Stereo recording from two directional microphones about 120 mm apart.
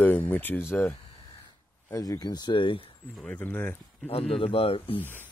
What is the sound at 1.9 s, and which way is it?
Speech, 30° left (ahead or behind).